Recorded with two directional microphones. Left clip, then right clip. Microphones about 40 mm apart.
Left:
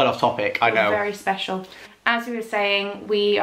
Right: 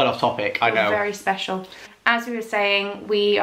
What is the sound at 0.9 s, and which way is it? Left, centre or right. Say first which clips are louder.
A woman's voice: right 1 dB; centre.